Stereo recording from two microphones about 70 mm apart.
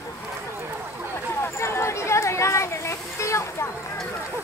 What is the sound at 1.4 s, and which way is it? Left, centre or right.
Children playing, left.